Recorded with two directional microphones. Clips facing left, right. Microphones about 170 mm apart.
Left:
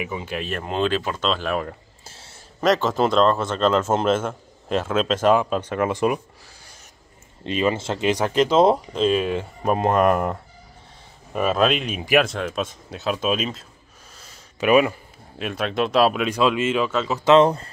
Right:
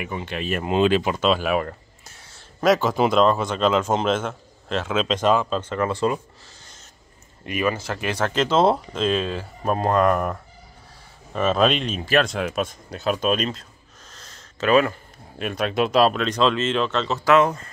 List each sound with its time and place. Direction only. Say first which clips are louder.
0.0 s speech: even; 5° left (ahead or behind)
2.0 s a sound: left 3 dB; 30° left (ahead or behind)
2.6 s a man's voice: right 1 dB; 5° right (ahead or behind); by 6.8 s 10° left (ahead or behind)
7.4 s speech: left 2 dB; 25° left (ahead or behind); by 9.2 s 5° left (ahead or behind)
9.2 s speech: left 3 dB; 20° left (ahead or behind)
11.3 s speech: even; 5° left (ahead or behind)
12.3 s speech: right 1 dB; 5° right (ahead or behind)
14.1 s a sound: even; 10° left (ahead or behind)
15.3 s speech: right 1 dB; centre (ahead or behind)
17.2 s speech: left 3 dB; 30° left (ahead or behind)